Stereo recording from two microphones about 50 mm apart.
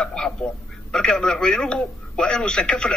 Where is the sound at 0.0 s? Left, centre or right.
Centre.